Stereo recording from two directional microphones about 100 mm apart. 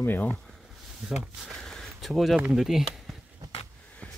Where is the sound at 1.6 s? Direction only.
5° left (ahead or behind).